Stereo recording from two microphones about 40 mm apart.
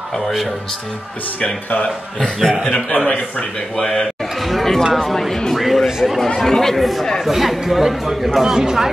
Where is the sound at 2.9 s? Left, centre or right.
Left.